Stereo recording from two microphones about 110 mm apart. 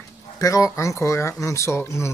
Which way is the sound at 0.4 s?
30° left (ahead or behind).